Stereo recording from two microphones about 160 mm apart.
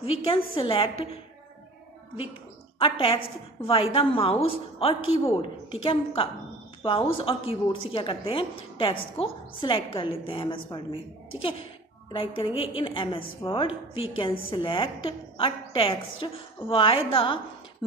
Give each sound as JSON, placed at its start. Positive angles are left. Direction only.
{"t": 0.0, "sound": "a woman's voice", "side_deg": 35}
{"t": 2.8, "sound": "a woman's voice", "side_deg": 35}
{"t": 12.1, "sound": "a woman's voice", "side_deg": 30}